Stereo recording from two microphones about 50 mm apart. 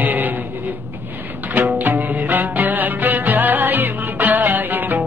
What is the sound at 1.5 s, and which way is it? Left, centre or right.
Music, right.